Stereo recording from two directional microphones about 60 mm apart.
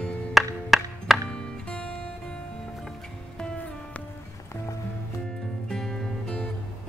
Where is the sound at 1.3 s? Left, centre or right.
Centre.